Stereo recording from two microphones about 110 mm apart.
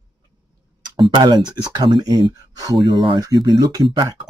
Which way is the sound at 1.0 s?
45° right (ahead or behind).